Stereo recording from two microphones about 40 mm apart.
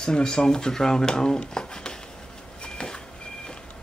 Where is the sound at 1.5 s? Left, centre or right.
Centre.